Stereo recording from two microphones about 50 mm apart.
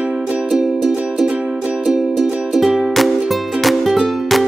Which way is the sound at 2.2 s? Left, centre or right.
Centre.